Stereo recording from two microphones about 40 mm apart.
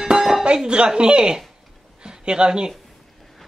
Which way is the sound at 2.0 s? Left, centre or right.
Right.